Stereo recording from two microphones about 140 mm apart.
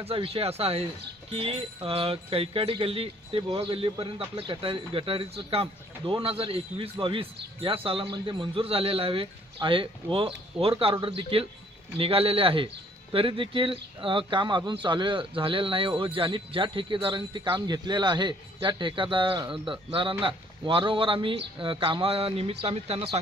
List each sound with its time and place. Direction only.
0.0 s speech: 45° right (ahead or behind)